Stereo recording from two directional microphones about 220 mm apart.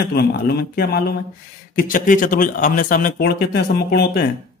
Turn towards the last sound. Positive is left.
turn(degrees=45)  # may be behind; listen again after turning